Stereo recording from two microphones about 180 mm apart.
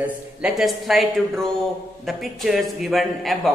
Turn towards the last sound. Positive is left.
turn(degrees=0)  # may be behind; listen again after turning